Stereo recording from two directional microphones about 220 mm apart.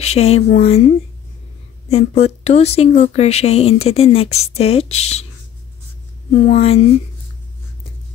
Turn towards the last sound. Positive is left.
turn(degrees=30)  # may be behind; listen again after turning